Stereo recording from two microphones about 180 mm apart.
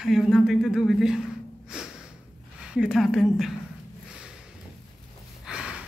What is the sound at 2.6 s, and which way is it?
Speech, 5° right (ahead or behind).